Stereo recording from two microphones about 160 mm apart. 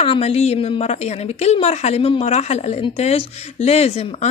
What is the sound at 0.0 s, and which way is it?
A woman's voice, 40° left (ahead or behind).